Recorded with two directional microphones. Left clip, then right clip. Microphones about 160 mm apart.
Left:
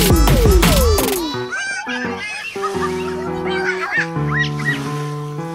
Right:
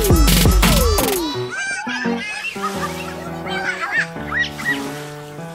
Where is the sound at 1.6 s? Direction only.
30° left (ahead or behind).